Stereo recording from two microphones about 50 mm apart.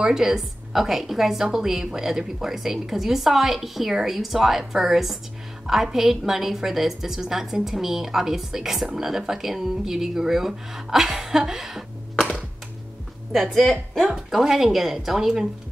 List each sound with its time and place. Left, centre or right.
0.0 s a woman's voice: centre
13.5 s speech: centre
14.1 s a woman's voice: centre